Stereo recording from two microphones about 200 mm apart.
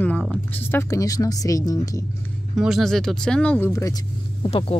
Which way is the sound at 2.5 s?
Centre (ahead or behind).